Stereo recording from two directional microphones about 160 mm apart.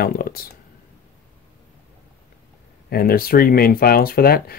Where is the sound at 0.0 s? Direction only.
65° left (ahead or behind).